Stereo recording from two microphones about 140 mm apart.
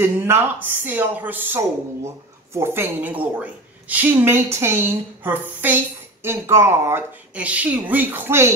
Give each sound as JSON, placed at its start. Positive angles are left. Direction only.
{"t": 0.0, "sound": "speech", "side_deg": -15}